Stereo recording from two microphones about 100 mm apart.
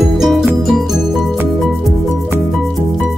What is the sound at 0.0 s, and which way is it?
Music, centre (ahead or behind).